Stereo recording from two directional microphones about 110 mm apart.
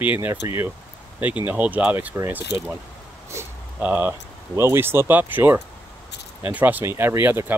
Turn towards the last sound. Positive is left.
turn(degrees=-20)  # may be behind; listen again after turning